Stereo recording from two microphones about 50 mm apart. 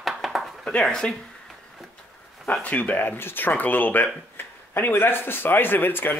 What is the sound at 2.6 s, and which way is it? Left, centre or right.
Speech, left.